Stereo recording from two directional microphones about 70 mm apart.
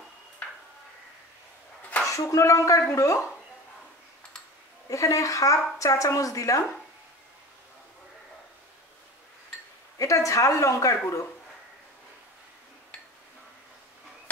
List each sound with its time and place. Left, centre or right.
2.0 s a woman's voice: left
4.8 s a woman's voice: left
9.9 s a woman's voice: left